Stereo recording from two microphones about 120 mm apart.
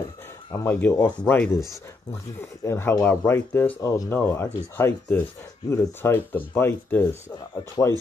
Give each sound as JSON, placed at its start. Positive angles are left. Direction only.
{"t": 0.5, "sound": "speech", "side_deg": 15}
{"t": 2.6, "sound": "speech", "side_deg": 20}
{"t": 7.8, "sound": "speech", "side_deg": 30}